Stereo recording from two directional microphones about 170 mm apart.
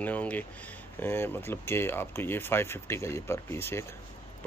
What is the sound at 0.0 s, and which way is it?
Speech, 10° left (ahead or behind).